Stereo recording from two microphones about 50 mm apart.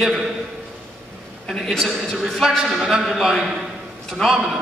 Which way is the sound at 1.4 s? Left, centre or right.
Centre.